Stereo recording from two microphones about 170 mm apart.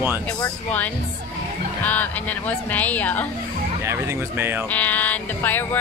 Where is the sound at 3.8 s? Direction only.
15° right (ahead or behind).